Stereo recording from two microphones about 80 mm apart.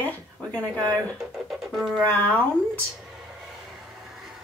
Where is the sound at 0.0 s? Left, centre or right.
Left.